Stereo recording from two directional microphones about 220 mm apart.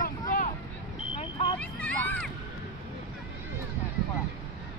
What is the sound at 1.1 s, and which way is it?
Vehicle, 20° left (ahead or behind).